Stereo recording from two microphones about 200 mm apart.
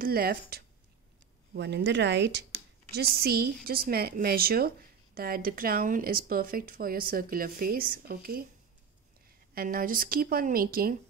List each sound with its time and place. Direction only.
0.0 s a woman's voice: 50° right (ahead or behind)
9.5 s a woman's voice: 45° right (ahead or behind)